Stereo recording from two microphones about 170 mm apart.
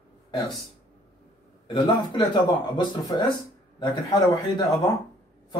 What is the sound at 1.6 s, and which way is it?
Speech, 25° left (ahead or behind).